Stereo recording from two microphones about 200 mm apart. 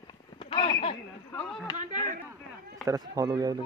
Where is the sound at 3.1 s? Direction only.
20° right (ahead or behind).